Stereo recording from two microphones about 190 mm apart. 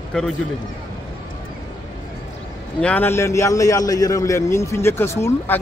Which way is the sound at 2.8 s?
10° left (ahead or behind).